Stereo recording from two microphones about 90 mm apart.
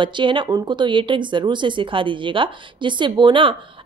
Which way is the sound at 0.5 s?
50° right (ahead or behind).